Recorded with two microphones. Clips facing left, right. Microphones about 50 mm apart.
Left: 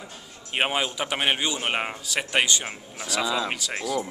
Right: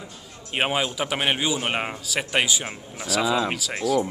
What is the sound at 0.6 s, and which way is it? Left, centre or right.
A man's voice, centre.